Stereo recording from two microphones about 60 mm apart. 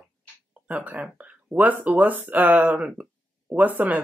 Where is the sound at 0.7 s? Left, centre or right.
Right.